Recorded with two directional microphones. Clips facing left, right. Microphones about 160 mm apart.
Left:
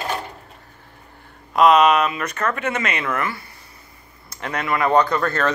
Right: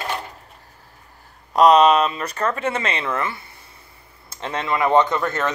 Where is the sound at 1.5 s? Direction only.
35° right (ahead or behind).